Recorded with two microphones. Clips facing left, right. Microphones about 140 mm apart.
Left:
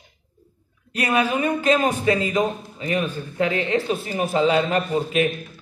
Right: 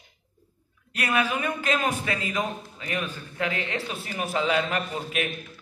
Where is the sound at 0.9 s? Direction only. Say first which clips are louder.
Left 5 dB; 25° left (ahead or behind).